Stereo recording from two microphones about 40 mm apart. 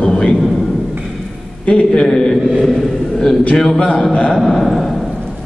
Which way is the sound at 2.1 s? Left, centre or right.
Centre.